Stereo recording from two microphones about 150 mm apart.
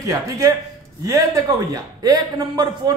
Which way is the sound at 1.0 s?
25° right (ahead or behind).